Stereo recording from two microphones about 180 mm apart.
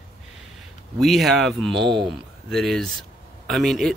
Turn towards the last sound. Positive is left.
turn(degrees=0)  # may be behind; listen again after turning